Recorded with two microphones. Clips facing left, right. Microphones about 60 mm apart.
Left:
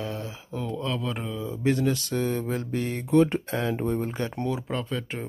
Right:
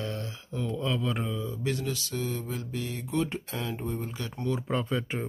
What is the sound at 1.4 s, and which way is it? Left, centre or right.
Mantra, left.